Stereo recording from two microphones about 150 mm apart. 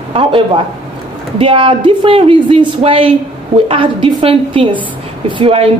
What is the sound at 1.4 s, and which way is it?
A woman's voice, 35° right (ahead or behind).